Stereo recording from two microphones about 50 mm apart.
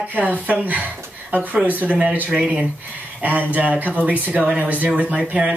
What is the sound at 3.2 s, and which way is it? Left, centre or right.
Speech, right.